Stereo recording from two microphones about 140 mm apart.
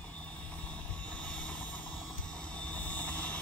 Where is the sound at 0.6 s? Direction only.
10° left (ahead or behind).